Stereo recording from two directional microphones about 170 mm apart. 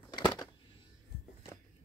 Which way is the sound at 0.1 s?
25° left (ahead or behind).